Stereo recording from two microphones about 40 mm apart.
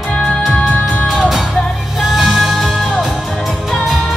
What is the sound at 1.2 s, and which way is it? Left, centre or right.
Music, centre.